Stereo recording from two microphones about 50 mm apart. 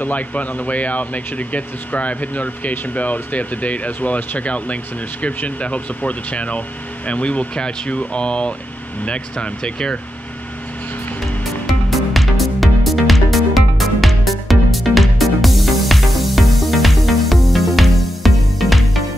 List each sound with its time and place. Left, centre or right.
0.0 s speech: left
11.9 s music: centre